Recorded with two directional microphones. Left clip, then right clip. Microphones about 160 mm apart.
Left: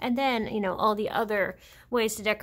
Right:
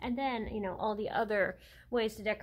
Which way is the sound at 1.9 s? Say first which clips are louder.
Left 6 dB; 25° left (ahead or behind).